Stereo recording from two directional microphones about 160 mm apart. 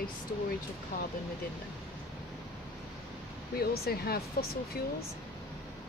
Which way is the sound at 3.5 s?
75° left (ahead or behind).